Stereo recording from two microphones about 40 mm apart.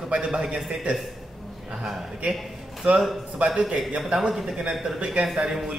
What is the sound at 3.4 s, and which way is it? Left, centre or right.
Speech, centre.